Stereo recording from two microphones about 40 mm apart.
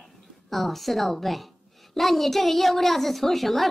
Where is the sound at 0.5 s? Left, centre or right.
Centre.